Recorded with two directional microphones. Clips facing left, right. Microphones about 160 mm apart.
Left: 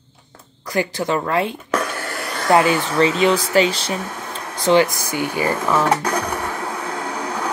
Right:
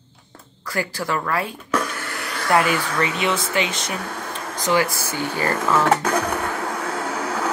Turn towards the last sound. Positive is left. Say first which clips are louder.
# even
turn(degrees=-5)  # may be behind; listen again after turning